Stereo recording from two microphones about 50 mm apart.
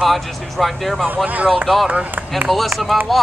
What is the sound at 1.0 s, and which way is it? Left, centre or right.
Speech, right.